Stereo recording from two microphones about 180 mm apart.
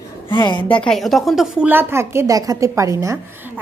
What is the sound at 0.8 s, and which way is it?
A woman's voice, centre (ahead or behind).